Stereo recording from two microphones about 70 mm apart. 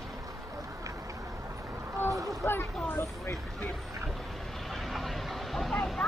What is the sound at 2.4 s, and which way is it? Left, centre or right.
Speech, left.